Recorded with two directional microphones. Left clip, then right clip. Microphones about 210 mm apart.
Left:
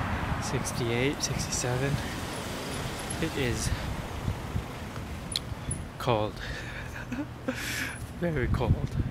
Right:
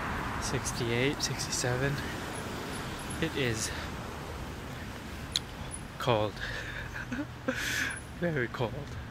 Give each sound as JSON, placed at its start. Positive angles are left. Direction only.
{"t": 0.4, "sound": "speech", "side_deg": 0}
{"t": 3.2, "sound": "speech", "side_deg": 0}
{"t": 6.0, "sound": "speech", "side_deg": 0}